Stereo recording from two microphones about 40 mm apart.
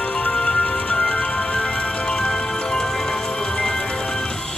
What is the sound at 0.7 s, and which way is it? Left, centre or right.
Music, left.